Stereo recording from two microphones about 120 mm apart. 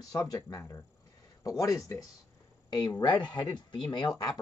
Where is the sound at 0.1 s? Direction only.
30° left (ahead or behind).